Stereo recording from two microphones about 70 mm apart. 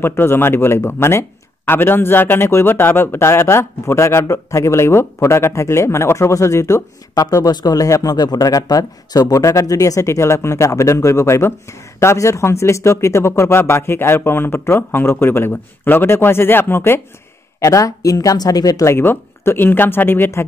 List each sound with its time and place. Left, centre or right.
0.0 s a man's voice: left
7.2 s a man's voice: left
17.6 s speech: left
18.9 s a man's voice: left